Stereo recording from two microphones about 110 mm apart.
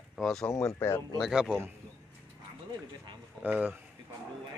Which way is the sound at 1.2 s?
5° right (ahead or behind).